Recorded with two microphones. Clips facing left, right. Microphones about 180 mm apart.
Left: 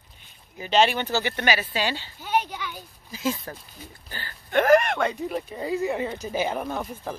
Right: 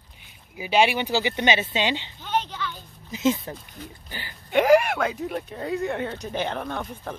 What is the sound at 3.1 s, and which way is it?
Speech, 20° right (ahead or behind).